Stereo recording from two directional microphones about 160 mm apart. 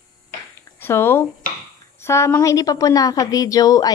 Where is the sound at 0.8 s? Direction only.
15° left (ahead or behind).